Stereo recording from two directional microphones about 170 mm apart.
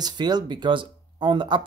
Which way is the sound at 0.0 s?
25° right (ahead or behind).